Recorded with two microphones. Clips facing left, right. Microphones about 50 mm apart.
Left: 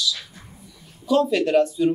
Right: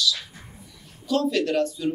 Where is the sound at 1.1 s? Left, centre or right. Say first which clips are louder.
Left 4 dB; centre.